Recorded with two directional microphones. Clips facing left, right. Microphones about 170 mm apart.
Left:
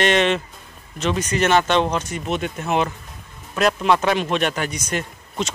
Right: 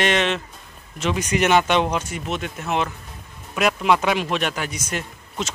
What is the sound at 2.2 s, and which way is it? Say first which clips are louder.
Speech: left 3 dB; centre (ahead or behind).